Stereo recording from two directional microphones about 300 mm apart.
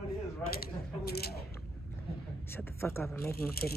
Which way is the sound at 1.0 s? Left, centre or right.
Left.